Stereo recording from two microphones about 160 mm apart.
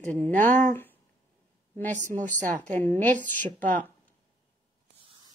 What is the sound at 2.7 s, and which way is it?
Speech, 10° left (ahead or behind).